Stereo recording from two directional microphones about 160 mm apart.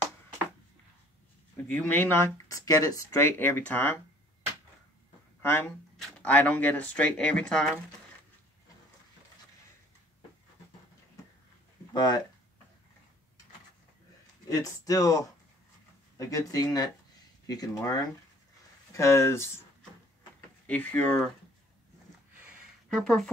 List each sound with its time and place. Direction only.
1.7 s speech: 10° left (ahead or behind)
5.4 s speech: 15° left (ahead or behind)
11.9 s speech: 25° left (ahead or behind)
14.5 s speech: 20° left (ahead or behind)
20.6 s speech: 10° left (ahead or behind)
22.9 s speech: centre (ahead or behind)